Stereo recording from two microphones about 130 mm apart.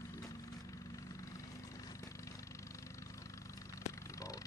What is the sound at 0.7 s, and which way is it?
Vehicle, 25° left (ahead or behind).